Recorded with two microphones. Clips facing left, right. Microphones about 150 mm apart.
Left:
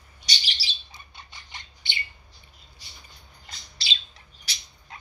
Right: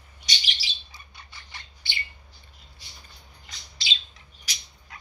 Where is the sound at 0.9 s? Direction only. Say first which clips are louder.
Left 1 dB; 20° left (ahead or behind).